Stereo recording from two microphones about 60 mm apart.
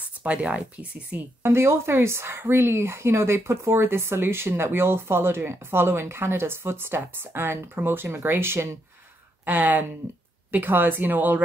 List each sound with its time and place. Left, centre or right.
0.2 s speech: right
1.4 s speech: right
9.5 s speech: right